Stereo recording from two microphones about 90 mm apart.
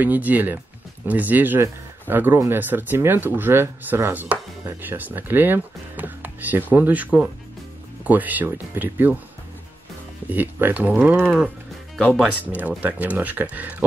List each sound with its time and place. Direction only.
0.0 s speech: 20° right (ahead or behind)
10.3 s speech: 20° right (ahead or behind)
12.3 s speech: 15° right (ahead or behind)